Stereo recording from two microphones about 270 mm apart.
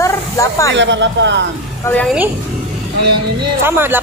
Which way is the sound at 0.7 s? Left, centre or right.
Right.